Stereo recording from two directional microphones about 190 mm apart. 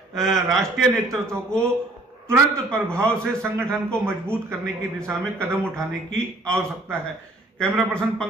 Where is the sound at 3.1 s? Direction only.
15° right (ahead or behind).